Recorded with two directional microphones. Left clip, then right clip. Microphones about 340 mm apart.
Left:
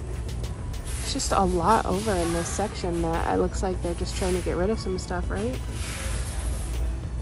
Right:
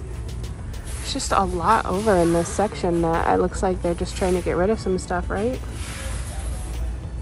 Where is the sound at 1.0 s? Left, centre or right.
Centre.